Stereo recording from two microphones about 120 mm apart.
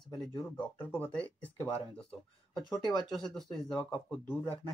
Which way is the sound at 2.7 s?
35° left (ahead or behind).